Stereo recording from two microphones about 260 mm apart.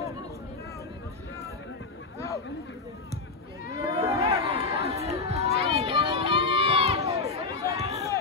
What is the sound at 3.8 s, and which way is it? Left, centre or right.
Chatter, centre.